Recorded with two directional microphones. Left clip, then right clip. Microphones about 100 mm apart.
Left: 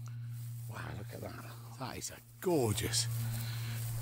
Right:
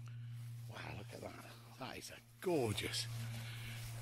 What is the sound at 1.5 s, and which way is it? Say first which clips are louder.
Speech: left 5 dB; 30° left (ahead or behind).